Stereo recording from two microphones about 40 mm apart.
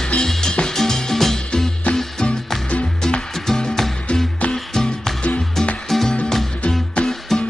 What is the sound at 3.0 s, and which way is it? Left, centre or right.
Music, centre.